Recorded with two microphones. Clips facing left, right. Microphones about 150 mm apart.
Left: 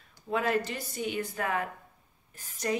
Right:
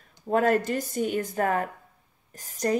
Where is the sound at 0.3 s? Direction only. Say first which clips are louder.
Right 6 dB; 45° right (ahead or behind).